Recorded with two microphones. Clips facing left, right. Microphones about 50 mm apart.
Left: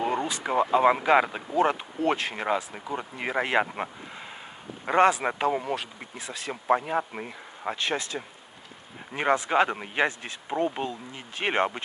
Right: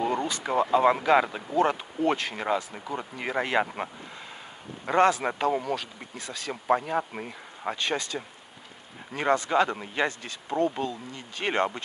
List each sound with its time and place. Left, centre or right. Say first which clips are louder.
0.0 s speech: even; centre